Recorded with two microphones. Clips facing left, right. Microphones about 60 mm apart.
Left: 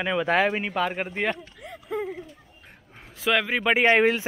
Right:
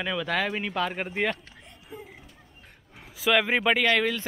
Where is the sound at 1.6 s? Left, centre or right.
Left.